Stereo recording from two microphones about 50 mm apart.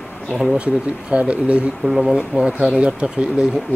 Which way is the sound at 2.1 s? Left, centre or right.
Centre.